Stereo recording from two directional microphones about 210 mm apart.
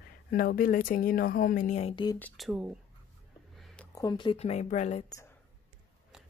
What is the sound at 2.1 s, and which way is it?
Speech, 5° left (ahead or behind).